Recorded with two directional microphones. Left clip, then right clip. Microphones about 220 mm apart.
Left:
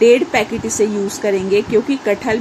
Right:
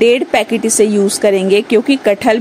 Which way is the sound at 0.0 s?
45° right (ahead or behind).